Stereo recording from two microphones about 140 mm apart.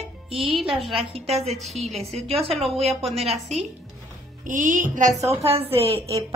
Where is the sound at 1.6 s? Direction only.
Centre (ahead or behind).